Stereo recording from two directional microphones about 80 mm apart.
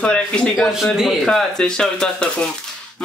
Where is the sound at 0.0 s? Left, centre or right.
Centre.